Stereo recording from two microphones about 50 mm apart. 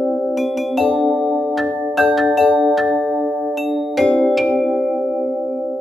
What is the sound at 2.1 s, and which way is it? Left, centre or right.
Marimba, centre.